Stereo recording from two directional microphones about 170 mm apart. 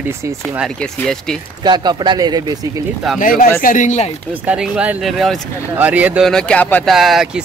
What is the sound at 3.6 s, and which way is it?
Speech, 45° left (ahead or behind).